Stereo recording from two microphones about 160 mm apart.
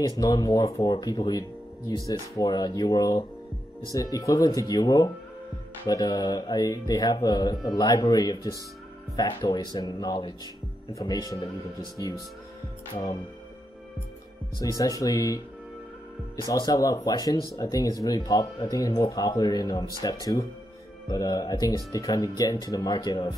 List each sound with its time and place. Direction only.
0.2 s speech: 25° left (ahead or behind)
14.6 s speech: 20° left (ahead or behind)
16.4 s speech: 25° left (ahead or behind)